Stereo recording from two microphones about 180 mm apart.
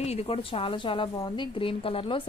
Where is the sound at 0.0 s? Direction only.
35° left (ahead or behind).